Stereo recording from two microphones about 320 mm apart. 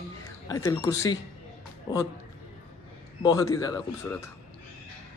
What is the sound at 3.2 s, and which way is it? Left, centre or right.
Speech, centre.